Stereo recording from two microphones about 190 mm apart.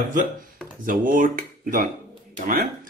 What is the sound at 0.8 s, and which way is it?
Speech, 45° right (ahead or behind).